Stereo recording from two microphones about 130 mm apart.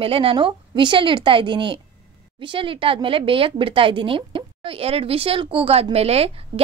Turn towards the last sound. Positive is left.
turn(degrees=-50)  # may be behind; listen again after turning